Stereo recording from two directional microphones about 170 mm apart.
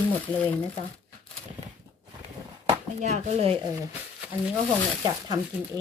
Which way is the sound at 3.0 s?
40° right (ahead or behind).